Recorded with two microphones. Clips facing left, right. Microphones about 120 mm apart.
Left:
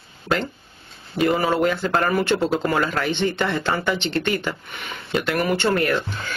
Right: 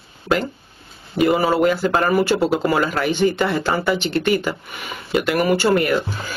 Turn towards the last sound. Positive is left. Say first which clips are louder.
# right 2 dB
turn(degrees=-10)  # may be behind; listen again after turning